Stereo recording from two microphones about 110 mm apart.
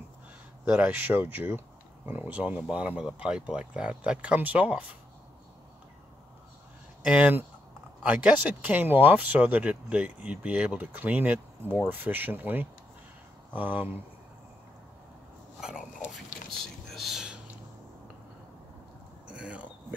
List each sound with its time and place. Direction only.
0.7 s speech: 10° right (ahead or behind)
7.1 s speech: 15° right (ahead or behind)
16.4 s whispering: centre (ahead or behind)
19.2 s a sound: 10° right (ahead or behind)